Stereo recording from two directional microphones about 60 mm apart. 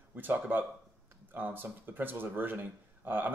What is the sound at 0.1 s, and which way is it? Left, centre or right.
Speech, right.